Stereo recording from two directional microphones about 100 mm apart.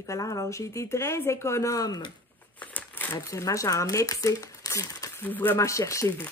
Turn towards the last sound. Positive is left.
turn(degrees=25)  # may be behind; listen again after turning